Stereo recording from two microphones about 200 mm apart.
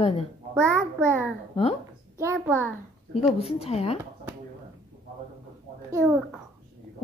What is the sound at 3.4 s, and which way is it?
Speech, 30° left (ahead or behind).